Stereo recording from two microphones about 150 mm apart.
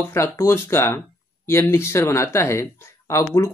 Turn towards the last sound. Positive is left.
turn(degrees=20)  # may be behind; listen again after turning